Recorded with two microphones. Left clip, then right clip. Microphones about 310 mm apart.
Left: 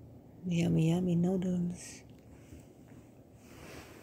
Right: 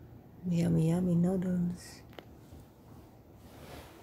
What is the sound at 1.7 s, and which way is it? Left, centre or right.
Speech, centre.